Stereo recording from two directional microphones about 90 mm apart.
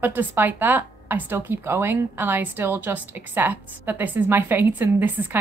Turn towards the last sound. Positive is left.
turn(degrees=-20)  # may be behind; listen again after turning